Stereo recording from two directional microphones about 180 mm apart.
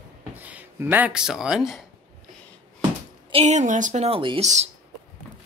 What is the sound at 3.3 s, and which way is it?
A woman's voice, 40° right (ahead or behind).